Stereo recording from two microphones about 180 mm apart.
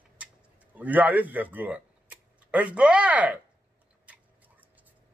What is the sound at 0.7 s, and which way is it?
Speech, 10° right (ahead or behind).